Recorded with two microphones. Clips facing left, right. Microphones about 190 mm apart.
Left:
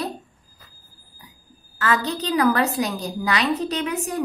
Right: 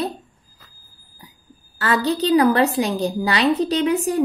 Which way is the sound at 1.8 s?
30° right (ahead or behind).